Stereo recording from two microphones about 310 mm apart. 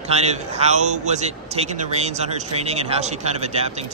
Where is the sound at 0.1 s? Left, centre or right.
Right.